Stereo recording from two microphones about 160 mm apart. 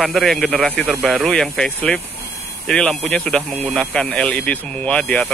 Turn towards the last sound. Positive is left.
turn(degrees=5)  # may be behind; listen again after turning